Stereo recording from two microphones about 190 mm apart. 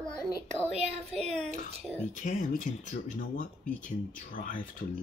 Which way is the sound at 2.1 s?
40° left (ahead or behind).